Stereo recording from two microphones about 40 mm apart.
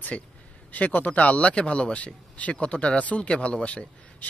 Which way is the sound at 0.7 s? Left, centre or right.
Left.